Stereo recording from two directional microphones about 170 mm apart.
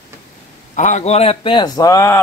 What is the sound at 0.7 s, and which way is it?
A man's voice, 45° left (ahead or behind).